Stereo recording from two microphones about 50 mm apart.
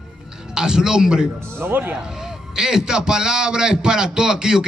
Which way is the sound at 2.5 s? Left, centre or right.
Centre.